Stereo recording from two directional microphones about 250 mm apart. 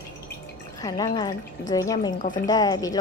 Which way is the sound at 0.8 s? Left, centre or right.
Centre.